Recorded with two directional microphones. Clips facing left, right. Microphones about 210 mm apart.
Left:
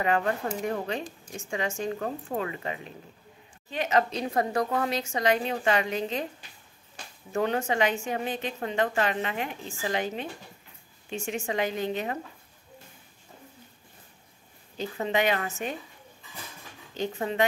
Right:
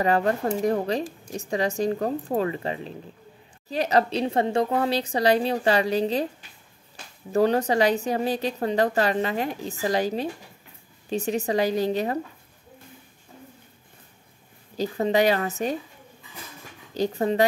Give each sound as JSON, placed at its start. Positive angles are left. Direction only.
{"t": 0.0, "sound": "a woman's voice", "side_deg": -35}
{"t": 7.3, "sound": "a woman's voice", "side_deg": -35}
{"t": 14.8, "sound": "a woman's voice", "side_deg": -35}
{"t": 16.9, "sound": "a woman's voice", "side_deg": -35}